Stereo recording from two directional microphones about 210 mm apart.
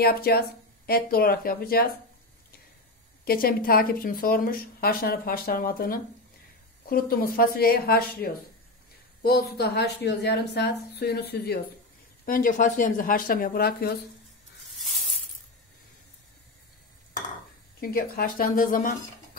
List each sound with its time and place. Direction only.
0.0 s a woman's voice: 45° left (ahead or behind)
3.3 s a woman's voice: 45° left (ahead or behind)
17.7 s a woman's voice: 45° left (ahead or behind)